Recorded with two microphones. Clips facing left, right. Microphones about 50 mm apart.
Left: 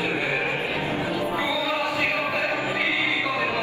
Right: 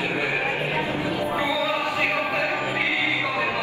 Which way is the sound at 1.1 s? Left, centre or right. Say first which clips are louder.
Even; right.